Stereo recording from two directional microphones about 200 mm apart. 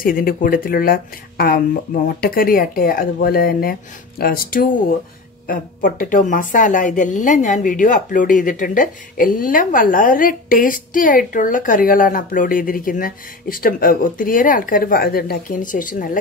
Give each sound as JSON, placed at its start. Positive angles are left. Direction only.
{"t": 0.0, "sound": "a woman's voice", "side_deg": 45}